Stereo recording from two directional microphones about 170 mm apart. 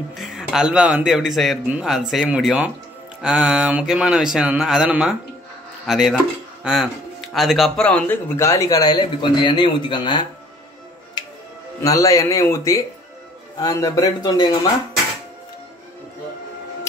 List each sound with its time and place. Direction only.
0.1 s a man's voice: 5° right (ahead or behind); by 10.2 s 25° left (ahead or behind)
11.8 s a man's voice: 20° left (ahead or behind)